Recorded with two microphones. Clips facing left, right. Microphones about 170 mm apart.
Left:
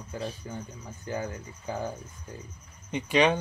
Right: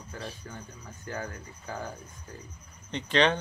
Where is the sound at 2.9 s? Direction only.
10° left (ahead or behind).